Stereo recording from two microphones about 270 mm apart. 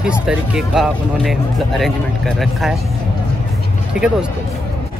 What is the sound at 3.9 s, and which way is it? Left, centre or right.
Speech, centre.